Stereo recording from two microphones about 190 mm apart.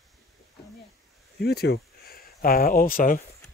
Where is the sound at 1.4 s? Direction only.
60° left (ahead or behind).